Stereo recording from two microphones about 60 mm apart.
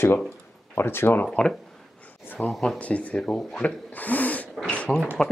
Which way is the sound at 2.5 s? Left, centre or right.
Centre.